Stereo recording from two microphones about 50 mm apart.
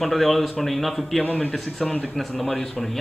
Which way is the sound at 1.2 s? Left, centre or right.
Left.